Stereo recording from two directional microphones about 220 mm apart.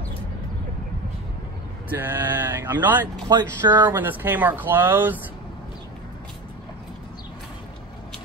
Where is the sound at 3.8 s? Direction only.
10° right (ahead or behind).